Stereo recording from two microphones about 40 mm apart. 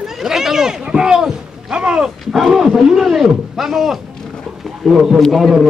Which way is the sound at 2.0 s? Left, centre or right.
Centre.